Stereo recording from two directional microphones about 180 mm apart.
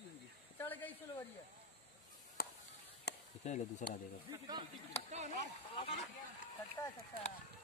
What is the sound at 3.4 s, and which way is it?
Speech, 40° left (ahead or behind).